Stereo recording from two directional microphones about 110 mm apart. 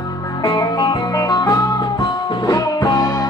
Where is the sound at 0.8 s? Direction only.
45° left (ahead or behind).